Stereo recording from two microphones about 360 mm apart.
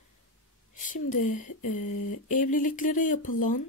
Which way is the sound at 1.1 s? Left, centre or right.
Left.